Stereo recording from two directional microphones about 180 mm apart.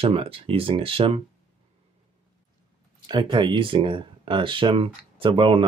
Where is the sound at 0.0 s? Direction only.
30° right (ahead or behind).